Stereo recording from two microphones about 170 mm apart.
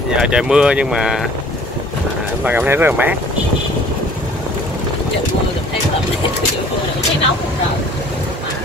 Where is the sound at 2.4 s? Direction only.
10° right (ahead or behind).